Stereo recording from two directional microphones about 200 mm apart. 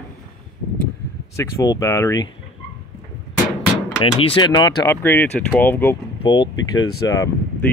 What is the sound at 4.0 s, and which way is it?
Speech, 25° left (ahead or behind).